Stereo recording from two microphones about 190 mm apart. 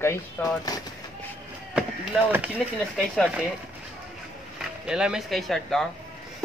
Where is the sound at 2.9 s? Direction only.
5° left (ahead or behind).